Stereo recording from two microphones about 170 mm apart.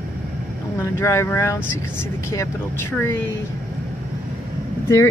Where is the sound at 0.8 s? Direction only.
15° left (ahead or behind).